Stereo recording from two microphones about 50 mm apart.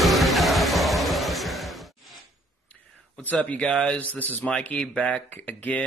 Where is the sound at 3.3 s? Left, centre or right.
Centre.